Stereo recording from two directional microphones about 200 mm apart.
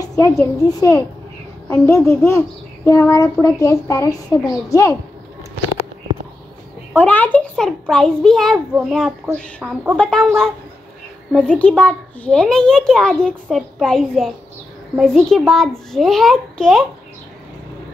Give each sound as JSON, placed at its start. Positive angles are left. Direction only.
{"t": 0.0, "sound": "a child's voice", "side_deg": 15}
{"t": 7.0, "sound": "a child's voice", "side_deg": 10}